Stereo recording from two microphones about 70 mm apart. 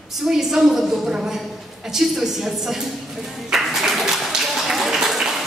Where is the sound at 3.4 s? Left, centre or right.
Centre.